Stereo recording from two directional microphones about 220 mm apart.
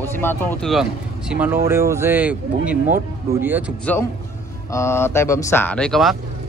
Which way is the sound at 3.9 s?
5° left (ahead or behind).